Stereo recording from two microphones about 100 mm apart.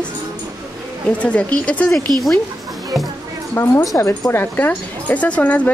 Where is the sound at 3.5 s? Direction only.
25° left (ahead or behind).